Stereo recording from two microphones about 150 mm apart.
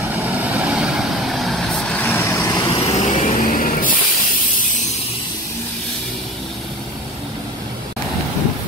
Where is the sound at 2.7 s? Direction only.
50° left (ahead or behind).